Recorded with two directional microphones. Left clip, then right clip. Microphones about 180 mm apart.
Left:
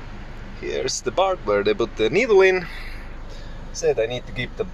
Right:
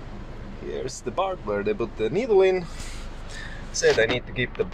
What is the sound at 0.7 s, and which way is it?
Speech, 10° left (ahead or behind).